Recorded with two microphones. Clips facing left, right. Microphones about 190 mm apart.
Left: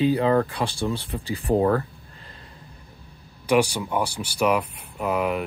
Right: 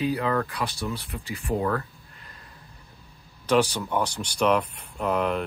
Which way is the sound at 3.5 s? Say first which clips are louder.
Left 2 dB; 10° left (ahead or behind).